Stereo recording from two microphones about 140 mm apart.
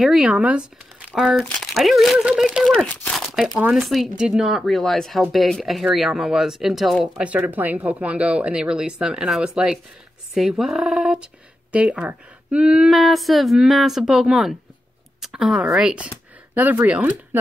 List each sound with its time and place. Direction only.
0.0 s speech: 5° right (ahead or behind)
7.2 s speech: 10° right (ahead or behind)